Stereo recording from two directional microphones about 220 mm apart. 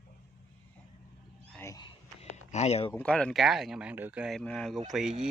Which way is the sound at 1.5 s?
15° left (ahead or behind).